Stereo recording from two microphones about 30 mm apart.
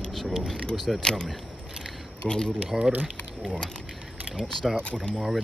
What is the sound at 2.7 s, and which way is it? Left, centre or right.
Speech, right.